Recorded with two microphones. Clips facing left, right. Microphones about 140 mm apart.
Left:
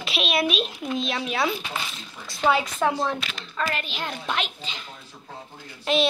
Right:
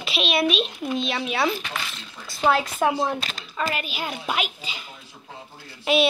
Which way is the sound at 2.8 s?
15° right (ahead or behind).